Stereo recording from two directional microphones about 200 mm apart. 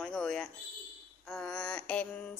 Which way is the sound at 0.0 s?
5° left (ahead or behind).